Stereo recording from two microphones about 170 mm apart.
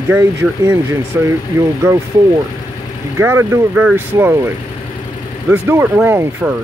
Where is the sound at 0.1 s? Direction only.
15° right (ahead or behind).